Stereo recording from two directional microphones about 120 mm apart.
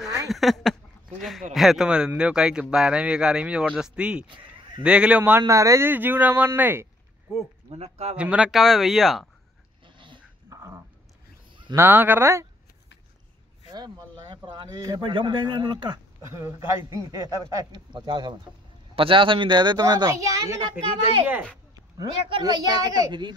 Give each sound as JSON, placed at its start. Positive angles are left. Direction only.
{"t": 0.3, "sound": "a man's voice", "side_deg": 0}
{"t": 5.4, "sound": "speech", "side_deg": -25}
{"t": 7.3, "sound": "speech", "side_deg": 0}
{"t": 7.7, "sound": "speech", "side_deg": -60}
{"t": 8.2, "sound": "speech", "side_deg": -10}
{"t": 9.9, "sound": "dog", "side_deg": -40}
{"t": 10.5, "sound": "dog", "side_deg": -25}
{"t": 11.7, "sound": "a man's voice", "side_deg": -20}
{"t": 13.7, "sound": "speech", "side_deg": -35}
{"t": 16.3, "sound": "a man's voice", "side_deg": -25}
{"t": 17.9, "sound": "speech", "side_deg": -40}
{"t": 22.4, "sound": "speech", "side_deg": -35}